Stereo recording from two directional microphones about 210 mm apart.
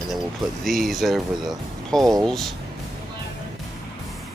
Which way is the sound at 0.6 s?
Centre (ahead or behind).